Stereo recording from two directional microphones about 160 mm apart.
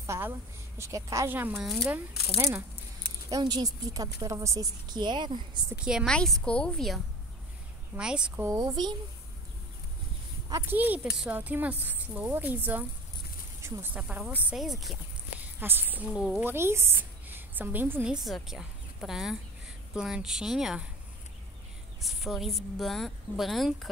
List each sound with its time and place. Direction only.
0.0 s speech: 15° right (ahead or behind)
2.3 s a woman's voice: 20° right (ahead or behind)
5.9 s a woman's voice: 5° right (ahead or behind)
7.9 s speech: 10° right (ahead or behind)
8.5 s a woman's voice: 20° right (ahead or behind)
10.5 s speech: 10° right (ahead or behind)
15.6 s a woman's voice: 10° right (ahead or behind)
22.0 s a woman's voice: centre (ahead or behind)